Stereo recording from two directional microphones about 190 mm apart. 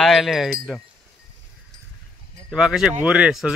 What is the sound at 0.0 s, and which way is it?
Speech, centre (ahead or behind).